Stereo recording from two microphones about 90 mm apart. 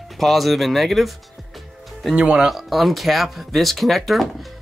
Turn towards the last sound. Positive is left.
turn(degrees=0)  # may be behind; listen again after turning